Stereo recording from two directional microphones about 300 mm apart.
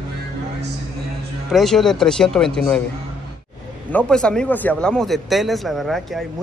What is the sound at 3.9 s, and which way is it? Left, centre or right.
Speech, centre.